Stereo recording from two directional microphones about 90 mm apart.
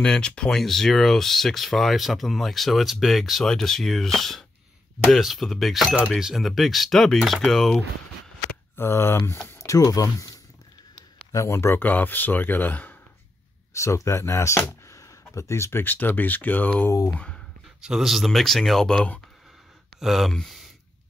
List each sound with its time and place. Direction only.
0.0 s speech: 10° left (ahead or behind)
8.7 s speech: 30° left (ahead or behind)
11.3 s speech: 30° left (ahead or behind)
13.7 s speech: 35° left (ahead or behind); by 17.4 s 10° left (ahead or behind)
17.8 s speech: 5° right (ahead or behind)